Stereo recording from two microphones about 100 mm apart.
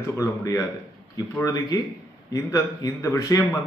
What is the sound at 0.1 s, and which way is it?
A man's voice, 30° left (ahead or behind).